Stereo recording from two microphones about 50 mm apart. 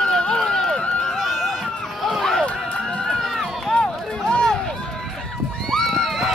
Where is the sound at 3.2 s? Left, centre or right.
Centre.